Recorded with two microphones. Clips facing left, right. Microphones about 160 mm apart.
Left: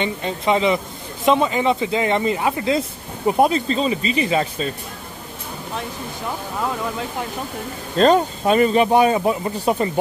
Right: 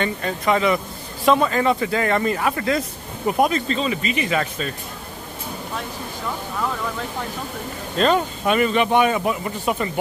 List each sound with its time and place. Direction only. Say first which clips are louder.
0.0 s speech: left 1 dB; 20° left (ahead or behind)
8.0 s speech: left 4 dB; 35° left (ahead or behind)